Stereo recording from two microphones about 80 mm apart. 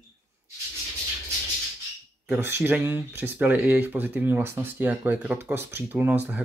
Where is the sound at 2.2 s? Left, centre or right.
Right.